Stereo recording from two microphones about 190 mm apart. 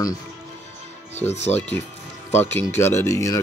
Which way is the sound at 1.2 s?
35° left (ahead or behind).